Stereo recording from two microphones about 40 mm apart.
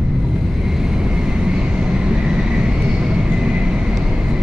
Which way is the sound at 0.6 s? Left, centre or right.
Centre.